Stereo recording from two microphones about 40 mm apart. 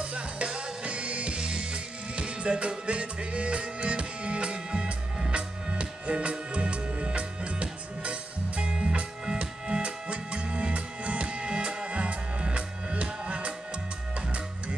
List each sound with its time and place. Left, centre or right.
0.0 s music: right